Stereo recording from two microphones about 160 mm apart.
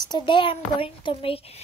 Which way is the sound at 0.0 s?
30° left (ahead or behind).